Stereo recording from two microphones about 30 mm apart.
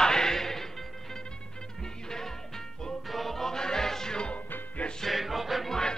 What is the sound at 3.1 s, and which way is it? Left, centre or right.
Music, centre.